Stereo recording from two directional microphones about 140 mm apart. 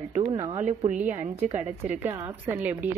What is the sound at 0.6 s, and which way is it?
Speech, 55° right (ahead or behind).